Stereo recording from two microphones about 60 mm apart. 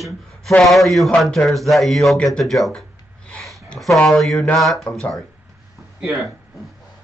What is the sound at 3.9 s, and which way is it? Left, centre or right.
Speech, centre.